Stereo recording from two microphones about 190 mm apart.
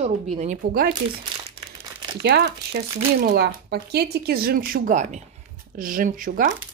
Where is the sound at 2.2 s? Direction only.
60° right (ahead or behind); by 6.5 s 45° right (ahead or behind).